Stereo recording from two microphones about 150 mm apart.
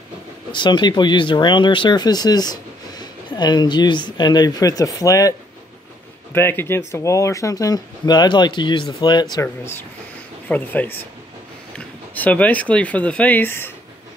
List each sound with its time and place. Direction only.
0.5 s speech: 30° left (ahead or behind)
6.3 s speech: 15° left (ahead or behind)
12.1 s speech: 10° left (ahead or behind)